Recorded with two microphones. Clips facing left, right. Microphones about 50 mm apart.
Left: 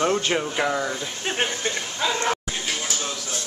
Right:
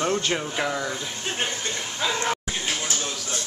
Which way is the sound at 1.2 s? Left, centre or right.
Left.